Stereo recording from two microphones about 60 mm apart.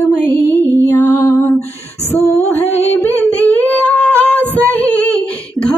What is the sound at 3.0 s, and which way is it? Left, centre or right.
Female singing, left.